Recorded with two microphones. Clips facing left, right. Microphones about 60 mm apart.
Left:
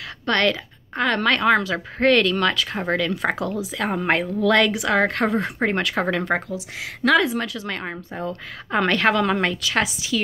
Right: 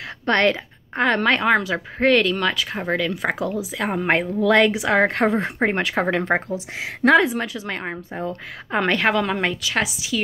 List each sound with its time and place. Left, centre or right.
0.2 s a woman's voice: right
6.5 s a woman's voice: right; by 10.2 s centre